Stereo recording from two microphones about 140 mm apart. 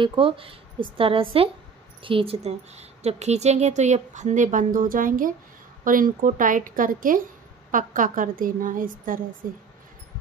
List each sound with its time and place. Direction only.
0.0 s a woman's voice: 35° right (ahead or behind); by 9.6 s 80° right